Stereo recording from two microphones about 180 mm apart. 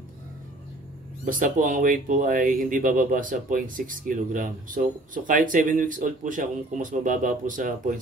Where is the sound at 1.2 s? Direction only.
50° right (ahead or behind).